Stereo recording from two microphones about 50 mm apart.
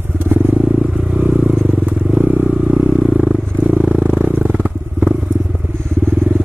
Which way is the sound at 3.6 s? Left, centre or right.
Right.